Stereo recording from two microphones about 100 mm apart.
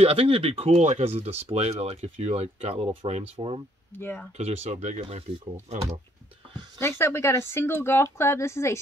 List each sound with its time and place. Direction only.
0.0 s speech: 75° right (ahead or behind)
3.9 s speech: 20° left (ahead or behind)
4.4 s speech: 90° right
6.8 s speech: 25° left (ahead or behind)